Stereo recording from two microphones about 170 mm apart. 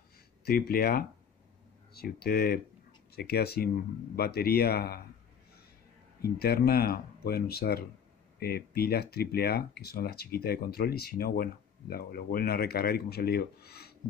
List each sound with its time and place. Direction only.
0.5 s speech: 60° left (ahead or behind)
6.2 s speech: 65° left (ahead or behind)